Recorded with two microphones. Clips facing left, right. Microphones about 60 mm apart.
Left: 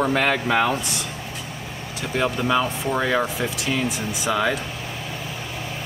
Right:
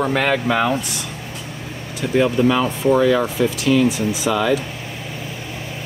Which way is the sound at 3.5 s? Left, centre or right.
Centre.